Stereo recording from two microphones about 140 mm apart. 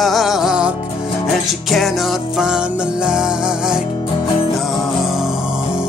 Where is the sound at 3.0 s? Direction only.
5° right (ahead or behind).